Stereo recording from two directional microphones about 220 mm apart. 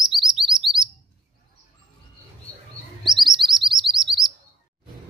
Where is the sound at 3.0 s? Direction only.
Centre (ahead or behind).